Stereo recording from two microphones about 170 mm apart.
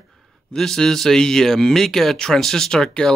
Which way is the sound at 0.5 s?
5° left (ahead or behind).